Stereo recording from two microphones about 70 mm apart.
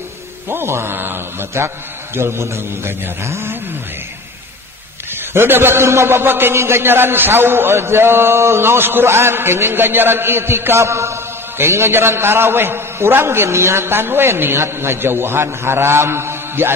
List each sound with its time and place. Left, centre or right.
0.5 s a man's voice: right
5.3 s a man's voice: right